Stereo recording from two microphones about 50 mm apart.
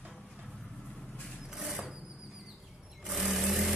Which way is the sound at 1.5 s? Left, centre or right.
Centre.